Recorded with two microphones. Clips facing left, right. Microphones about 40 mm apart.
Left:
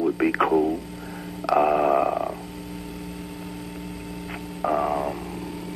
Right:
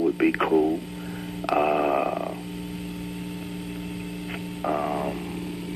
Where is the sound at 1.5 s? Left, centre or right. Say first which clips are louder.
Left 3 dB; centre.